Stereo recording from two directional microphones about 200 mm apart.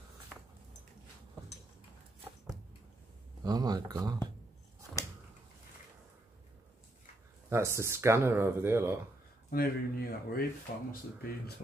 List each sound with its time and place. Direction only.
3.4 s speech: 20° right (ahead or behind)
7.4 s speech: 15° right (ahead or behind)
9.5 s speech: 50° left (ahead or behind)